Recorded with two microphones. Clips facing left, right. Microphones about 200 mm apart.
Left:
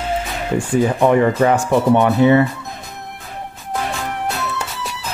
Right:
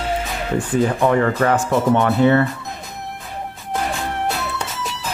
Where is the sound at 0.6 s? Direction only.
15° left (ahead or behind).